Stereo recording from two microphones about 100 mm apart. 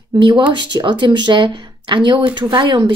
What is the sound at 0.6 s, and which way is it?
Speech, 50° right (ahead or behind).